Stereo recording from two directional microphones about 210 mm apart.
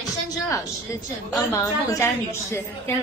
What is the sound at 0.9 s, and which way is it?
A woman's voice, 15° left (ahead or behind).